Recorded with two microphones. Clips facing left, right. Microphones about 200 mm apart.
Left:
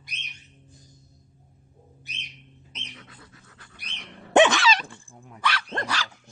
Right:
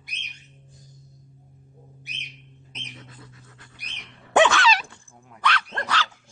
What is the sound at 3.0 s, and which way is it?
Dog, 25° right (ahead or behind).